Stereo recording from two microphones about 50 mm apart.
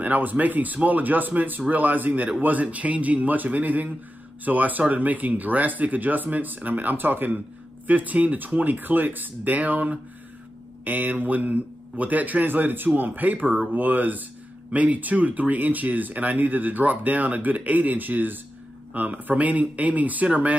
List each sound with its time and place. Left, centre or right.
0.0 s speech: right